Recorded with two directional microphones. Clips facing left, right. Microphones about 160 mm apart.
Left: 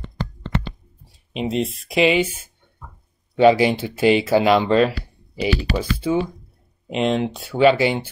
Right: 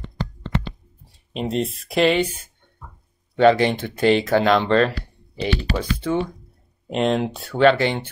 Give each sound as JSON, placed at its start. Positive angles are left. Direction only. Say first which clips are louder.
{"t": 1.3, "sound": "speech", "louder": "left 1 dB", "side_deg": 0}